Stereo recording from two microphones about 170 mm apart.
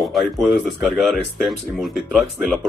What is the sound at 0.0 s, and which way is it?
Speech, centre (ahead or behind).